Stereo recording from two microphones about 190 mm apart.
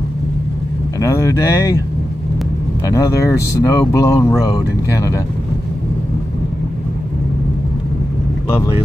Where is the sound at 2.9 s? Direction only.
15° left (ahead or behind).